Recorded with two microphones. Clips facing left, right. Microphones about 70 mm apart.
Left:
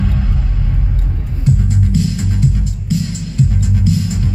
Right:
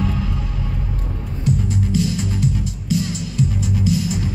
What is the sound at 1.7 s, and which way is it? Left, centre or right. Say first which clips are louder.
Music: left 2 dB; left.